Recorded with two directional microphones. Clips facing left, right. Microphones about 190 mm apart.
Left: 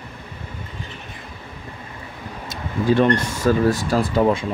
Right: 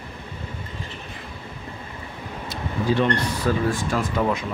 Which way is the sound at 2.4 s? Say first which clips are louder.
Left 4 dB; 45° left (ahead or behind).